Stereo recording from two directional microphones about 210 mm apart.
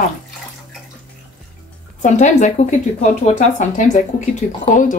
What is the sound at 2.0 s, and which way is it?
Speech, 35° left (ahead or behind).